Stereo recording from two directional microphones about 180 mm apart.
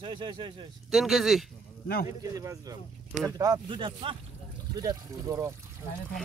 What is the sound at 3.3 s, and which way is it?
Speech, 20° right (ahead or behind).